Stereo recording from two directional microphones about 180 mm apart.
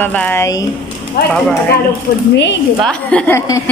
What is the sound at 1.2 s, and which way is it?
Speech, 60° left (ahead or behind).